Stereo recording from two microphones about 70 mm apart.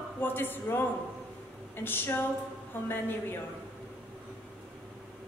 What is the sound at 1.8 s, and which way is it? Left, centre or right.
A woman's voice, left.